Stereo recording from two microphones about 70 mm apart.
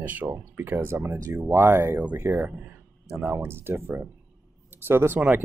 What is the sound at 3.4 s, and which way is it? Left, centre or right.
Speech, right.